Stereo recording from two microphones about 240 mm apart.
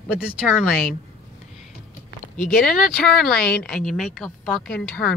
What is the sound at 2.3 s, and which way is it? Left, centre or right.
Speech, left.